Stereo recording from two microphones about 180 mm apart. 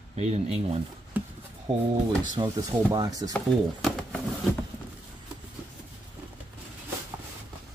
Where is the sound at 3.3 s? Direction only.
5° left (ahead or behind).